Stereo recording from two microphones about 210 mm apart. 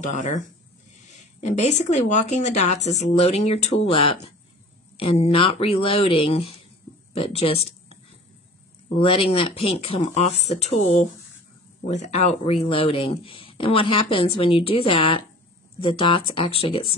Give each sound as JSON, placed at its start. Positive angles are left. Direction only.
{"t": 0.0, "sound": "speech", "side_deg": 35}
{"t": 9.0, "sound": "speech", "side_deg": 25}